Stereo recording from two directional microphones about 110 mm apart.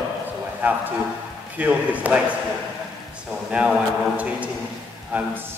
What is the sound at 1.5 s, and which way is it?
Speech, 15° right (ahead or behind).